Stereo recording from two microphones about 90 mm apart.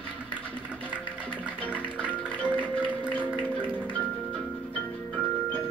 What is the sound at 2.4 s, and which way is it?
Music, 15° right (ahead or behind).